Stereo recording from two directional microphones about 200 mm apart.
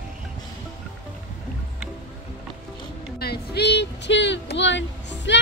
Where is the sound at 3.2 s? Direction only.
55° left (ahead or behind).